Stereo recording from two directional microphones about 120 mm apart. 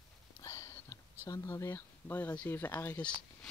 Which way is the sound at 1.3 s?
25° left (ahead or behind).